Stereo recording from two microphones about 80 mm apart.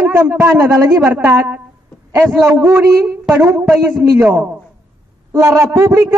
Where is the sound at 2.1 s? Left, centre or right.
Right.